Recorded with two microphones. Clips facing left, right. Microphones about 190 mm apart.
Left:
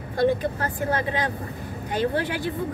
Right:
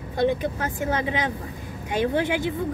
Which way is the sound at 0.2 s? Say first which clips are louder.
Left 1 dB; 20° right (ahead or behind).